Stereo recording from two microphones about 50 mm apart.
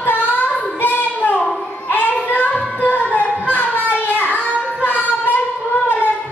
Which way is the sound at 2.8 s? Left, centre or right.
Left.